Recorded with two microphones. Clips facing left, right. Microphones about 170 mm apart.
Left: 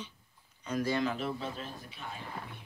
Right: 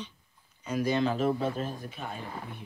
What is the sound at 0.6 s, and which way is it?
Speech, 10° right (ahead or behind).